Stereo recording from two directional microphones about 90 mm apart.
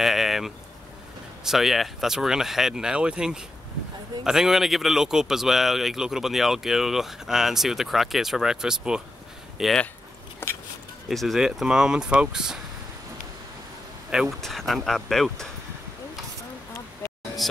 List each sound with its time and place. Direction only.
0.0 s a sound: 5° right (ahead or behind)
1.4 s a man's voice: 5° right (ahead or behind)
10.4 s a sound: 25° left (ahead or behind)
11.1 s speech: centre (ahead or behind)
14.4 s a man's voice: 5° left (ahead or behind)
17.4 s music: centre (ahead or behind)